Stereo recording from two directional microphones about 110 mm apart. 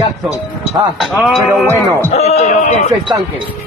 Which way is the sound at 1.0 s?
Centre (ahead or behind).